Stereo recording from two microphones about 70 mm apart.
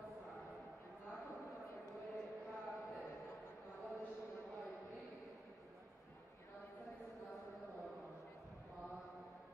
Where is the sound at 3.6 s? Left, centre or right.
Centre.